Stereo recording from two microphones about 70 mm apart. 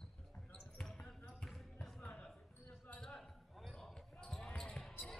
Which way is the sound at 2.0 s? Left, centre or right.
Centre.